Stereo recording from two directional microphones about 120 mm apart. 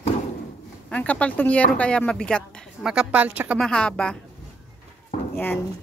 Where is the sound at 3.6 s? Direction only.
5° left (ahead or behind).